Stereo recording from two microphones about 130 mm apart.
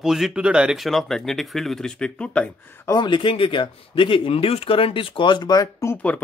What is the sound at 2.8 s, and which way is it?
Speech, 35° left (ahead or behind).